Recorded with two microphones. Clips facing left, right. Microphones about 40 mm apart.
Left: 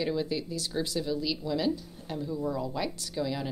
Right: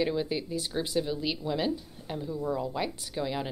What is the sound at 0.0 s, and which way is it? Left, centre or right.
A woman's voice, centre.